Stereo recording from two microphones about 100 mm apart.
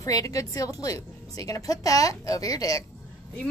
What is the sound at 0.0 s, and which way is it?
A woman's voice, 35° left (ahead or behind).